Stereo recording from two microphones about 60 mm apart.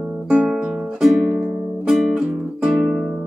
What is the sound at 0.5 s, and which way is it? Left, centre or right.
Music, centre.